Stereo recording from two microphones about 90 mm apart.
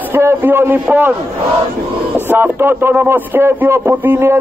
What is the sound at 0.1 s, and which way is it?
A man's voice, 25° right (ahead or behind).